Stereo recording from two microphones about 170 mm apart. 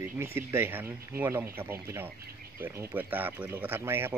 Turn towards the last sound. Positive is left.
turn(degrees=-15)  # may be behind; listen again after turning